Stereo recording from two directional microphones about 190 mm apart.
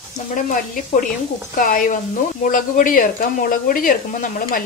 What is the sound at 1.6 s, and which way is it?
Speech, 45° left (ahead or behind).